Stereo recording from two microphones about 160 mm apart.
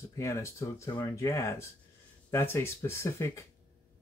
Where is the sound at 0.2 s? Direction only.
20° left (ahead or behind).